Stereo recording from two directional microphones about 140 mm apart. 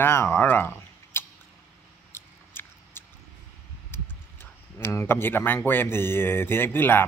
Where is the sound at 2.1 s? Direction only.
15° left (ahead or behind).